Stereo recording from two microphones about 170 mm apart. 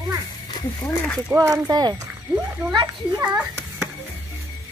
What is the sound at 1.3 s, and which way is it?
Speech, 15° right (ahead or behind).